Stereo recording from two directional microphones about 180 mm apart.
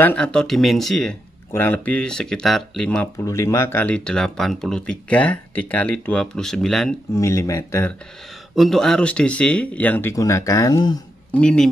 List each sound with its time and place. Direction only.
0.0 s speech: 5° left (ahead or behind)
3.3 s speech: 15° left (ahead or behind)
7.2 s speech: 15° left (ahead or behind)
8.5 s speech: centre (ahead or behind); by 11.0 s 20° left (ahead or behind)
11.3 s speech: 5° left (ahead or behind)